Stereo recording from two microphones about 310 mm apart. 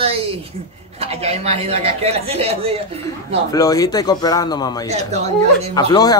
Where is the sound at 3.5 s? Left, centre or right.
Centre.